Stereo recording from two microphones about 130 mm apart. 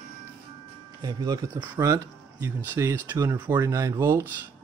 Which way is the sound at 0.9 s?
30° right (ahead or behind).